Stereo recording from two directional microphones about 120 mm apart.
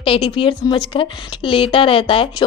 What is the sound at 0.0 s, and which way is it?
A woman's voice, 50° left (ahead or behind).